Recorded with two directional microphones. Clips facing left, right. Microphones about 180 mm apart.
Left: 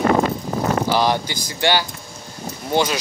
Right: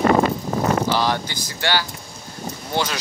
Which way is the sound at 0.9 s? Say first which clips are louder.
Left 2 dB; 15° left (ahead or behind).